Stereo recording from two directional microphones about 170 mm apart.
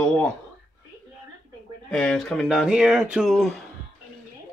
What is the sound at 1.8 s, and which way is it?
Speech, 5° left (ahead or behind).